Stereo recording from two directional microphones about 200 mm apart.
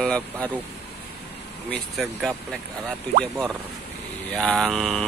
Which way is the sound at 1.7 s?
Centre (ahead or behind).